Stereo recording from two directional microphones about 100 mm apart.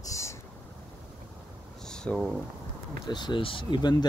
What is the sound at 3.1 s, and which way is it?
Speech, 50° left (ahead or behind).